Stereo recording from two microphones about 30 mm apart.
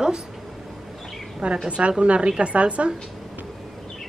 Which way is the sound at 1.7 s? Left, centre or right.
Right.